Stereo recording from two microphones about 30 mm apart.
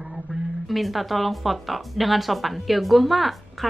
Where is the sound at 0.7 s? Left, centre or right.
Centre.